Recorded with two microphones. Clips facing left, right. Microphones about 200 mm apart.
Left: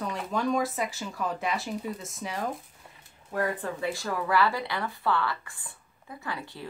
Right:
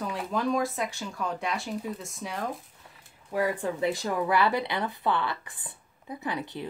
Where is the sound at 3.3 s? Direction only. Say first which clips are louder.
Right 2 dB; 10° right (ahead or behind).